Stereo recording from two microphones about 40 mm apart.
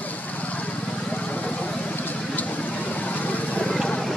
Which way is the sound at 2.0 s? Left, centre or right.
Left.